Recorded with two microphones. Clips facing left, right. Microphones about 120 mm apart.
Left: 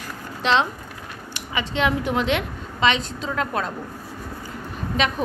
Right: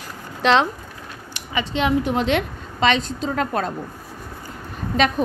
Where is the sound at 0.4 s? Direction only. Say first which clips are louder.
Right 3 dB; 55° right (ahead or behind).